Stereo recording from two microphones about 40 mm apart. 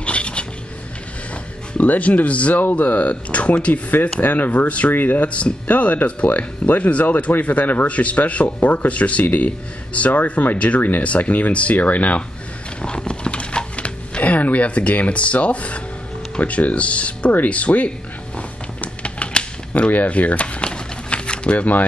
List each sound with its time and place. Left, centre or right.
0.0 s filing: left
1.9 s speech: left
4.2 s speech: left
4.6 s speech: left
4.9 s speech: left
7.4 s speech: left
7.8 s speech: left
9.2 s speech: left
9.9 s speech: left
12.8 s speech: left
19.0 s typewriter: left
19.9 s speech: left
20.7 s a sound: left